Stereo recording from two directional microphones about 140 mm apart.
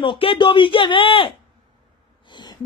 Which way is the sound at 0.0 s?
40° left (ahead or behind).